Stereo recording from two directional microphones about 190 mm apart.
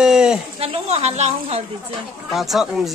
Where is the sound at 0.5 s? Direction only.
30° right (ahead or behind).